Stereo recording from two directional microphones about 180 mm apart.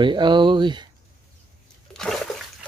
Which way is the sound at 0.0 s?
25° right (ahead or behind).